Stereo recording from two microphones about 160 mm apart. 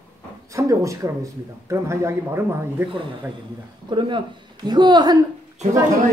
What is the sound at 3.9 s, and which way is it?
Speech, 30° right (ahead or behind).